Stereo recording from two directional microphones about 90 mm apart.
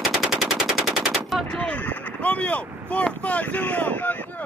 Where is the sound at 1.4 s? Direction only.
15° left (ahead or behind).